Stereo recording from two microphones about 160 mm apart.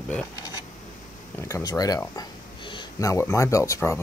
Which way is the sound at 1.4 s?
20° left (ahead or behind).